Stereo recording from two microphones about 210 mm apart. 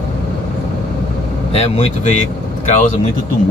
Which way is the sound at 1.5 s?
30° left (ahead or behind).